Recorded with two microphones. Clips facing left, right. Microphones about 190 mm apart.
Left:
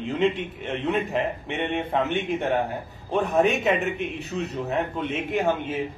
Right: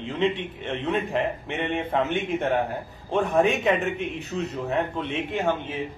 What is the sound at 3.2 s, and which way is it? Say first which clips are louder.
Speech: even; 40° left (ahead or behind).